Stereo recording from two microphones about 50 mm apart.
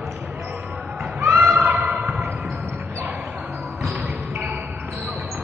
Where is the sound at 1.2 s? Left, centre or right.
Right.